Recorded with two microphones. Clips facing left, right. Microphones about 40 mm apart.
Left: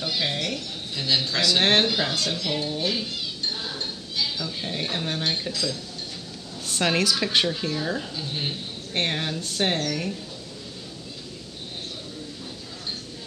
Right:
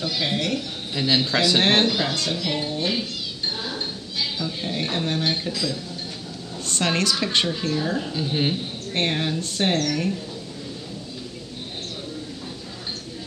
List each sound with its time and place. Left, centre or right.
0.2 s speech: centre
0.9 s speech: centre
1.6 s speech: centre
8.1 s speech: centre
8.9 s speech: centre